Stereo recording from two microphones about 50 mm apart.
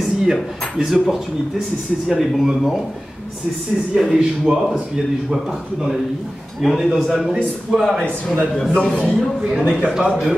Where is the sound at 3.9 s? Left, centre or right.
Centre.